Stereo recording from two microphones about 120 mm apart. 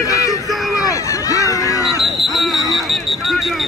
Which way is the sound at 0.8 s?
30° left (ahead or behind).